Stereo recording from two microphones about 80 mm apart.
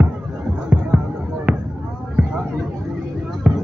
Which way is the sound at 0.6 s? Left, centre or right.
Centre.